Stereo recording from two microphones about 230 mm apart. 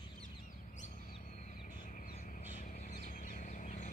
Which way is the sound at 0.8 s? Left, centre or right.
Left.